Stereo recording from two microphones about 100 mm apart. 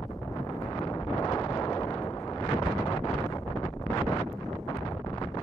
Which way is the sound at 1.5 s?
35° left (ahead or behind).